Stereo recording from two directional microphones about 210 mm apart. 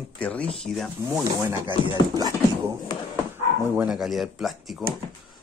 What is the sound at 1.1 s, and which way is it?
Speech, 15° right (ahead or behind).